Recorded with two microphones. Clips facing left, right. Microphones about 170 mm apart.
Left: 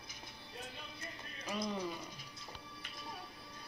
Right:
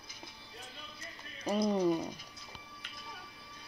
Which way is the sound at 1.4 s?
40° right (ahead or behind).